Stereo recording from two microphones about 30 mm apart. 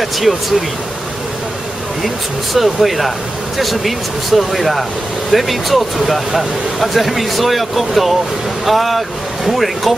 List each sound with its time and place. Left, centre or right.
0.0 s speech: centre
2.0 s speech: centre